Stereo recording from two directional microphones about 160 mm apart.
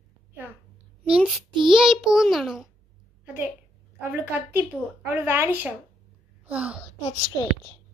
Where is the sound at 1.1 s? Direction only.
5° right (ahead or behind).